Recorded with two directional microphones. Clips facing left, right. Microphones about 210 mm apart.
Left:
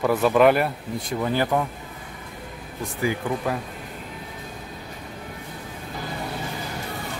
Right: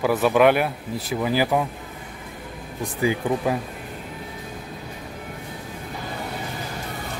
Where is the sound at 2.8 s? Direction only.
20° right (ahead or behind).